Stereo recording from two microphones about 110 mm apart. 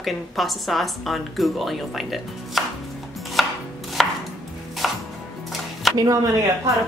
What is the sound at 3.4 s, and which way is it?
Chopping, centre (ahead or behind).